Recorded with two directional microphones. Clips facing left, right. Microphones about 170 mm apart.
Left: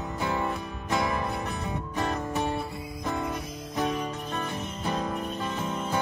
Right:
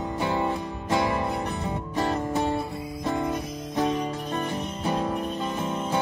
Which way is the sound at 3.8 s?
30° right (ahead or behind).